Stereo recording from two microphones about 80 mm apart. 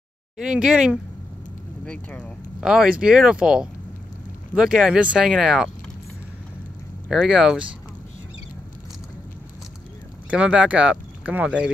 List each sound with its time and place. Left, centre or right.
0.4 s speech: centre
1.9 s speech: centre
2.6 s speech: centre
7.1 s speech: centre
10.3 s speech: centre